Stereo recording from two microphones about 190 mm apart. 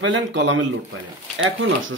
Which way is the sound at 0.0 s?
75° right (ahead or behind).